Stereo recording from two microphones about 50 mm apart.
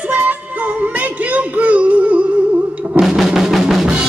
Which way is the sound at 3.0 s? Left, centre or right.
Centre.